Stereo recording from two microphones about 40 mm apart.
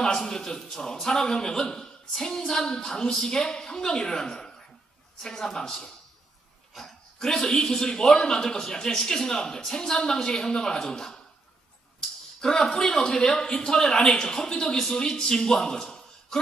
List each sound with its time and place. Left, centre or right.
0.2 s a man's voice: centre
6.7 s dog: centre
7.4 s a man's voice: centre
12.4 s a man's voice: centre